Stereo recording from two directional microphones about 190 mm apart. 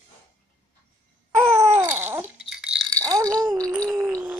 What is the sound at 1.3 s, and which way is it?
Babbling, 15° right (ahead or behind).